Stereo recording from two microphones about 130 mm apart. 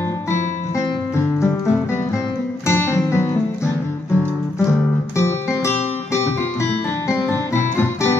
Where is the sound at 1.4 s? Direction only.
20° left (ahead or behind).